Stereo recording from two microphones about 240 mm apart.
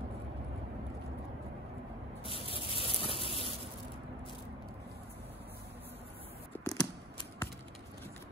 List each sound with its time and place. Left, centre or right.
2.2 s rub: left
6.6 s scissors: centre